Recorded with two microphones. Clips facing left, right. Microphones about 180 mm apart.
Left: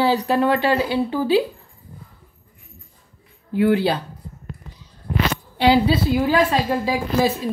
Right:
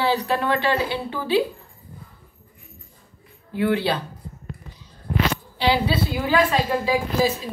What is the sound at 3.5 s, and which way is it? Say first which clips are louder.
Speech: left 4 dB; 45° left (ahead or behind).